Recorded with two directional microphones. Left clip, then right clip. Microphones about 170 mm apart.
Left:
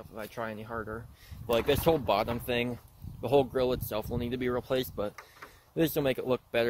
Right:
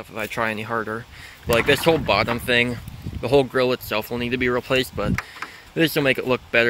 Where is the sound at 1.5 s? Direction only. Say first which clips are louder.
Right 8 dB; 5° left (ahead or behind).